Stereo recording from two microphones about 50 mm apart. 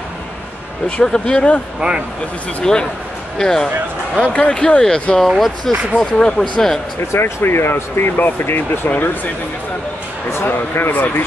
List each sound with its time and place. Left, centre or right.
0.8 s speech: centre
1.8 s speech: centre
2.6 s speech: centre
4.2 s speech: left
7.1 s speech: left
10.3 s speech: left
10.9 s speech: left